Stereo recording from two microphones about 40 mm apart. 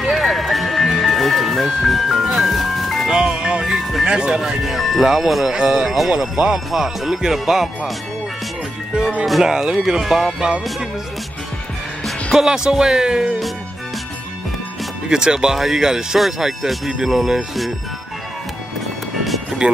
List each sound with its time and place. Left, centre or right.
0.1 s music: centre
3.1 s music: centre
4.0 s speech: right
4.4 s speech: centre
9.4 s speech: centre
10.4 s speech: right
12.4 s speech: centre
15.0 s speech: centre
19.1 s music: centre